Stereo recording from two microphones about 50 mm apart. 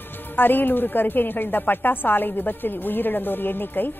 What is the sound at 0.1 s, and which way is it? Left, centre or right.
A woman's voice, left.